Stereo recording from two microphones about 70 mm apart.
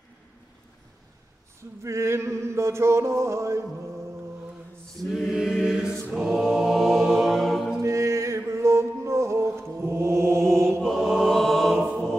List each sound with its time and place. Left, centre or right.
1.6 s a sound: right
5.1 s mantra: centre
7.8 s music: right
10.8 s choir: centre
11.7 s music: centre